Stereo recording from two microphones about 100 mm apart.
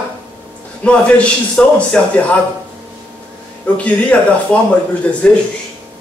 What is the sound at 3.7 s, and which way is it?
Speech, 15° left (ahead or behind).